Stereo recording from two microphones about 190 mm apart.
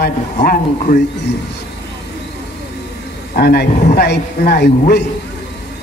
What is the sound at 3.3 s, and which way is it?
A man's voice, 55° left (ahead or behind).